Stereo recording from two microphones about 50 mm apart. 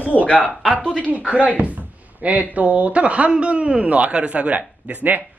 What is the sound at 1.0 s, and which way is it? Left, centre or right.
Speech, right.